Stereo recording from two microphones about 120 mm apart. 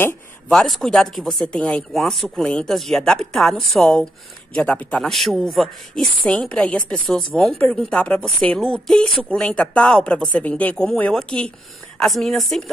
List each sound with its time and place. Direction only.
0.5 s a man's voice: 5° left (ahead or behind)